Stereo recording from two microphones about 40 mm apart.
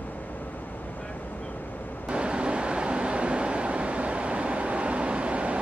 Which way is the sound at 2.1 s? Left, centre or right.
Right.